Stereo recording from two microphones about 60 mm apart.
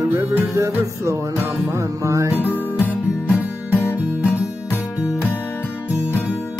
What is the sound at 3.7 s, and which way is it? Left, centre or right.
Music, left.